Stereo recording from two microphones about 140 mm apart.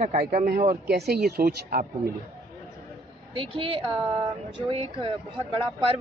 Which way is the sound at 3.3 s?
40° right (ahead or behind).